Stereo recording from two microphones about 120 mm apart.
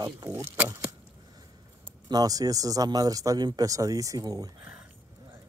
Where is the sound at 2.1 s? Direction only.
30° right (ahead or behind).